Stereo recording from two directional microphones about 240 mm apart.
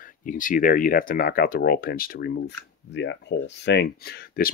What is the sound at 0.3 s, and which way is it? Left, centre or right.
Speech, left.